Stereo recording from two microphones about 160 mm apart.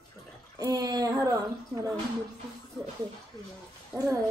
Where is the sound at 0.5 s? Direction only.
25° right (ahead or behind).